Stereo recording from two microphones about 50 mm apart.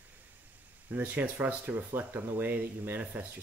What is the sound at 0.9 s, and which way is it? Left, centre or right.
Speech, right.